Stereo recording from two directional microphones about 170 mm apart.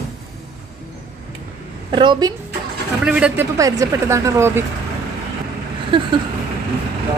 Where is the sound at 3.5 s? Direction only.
20° right (ahead or behind).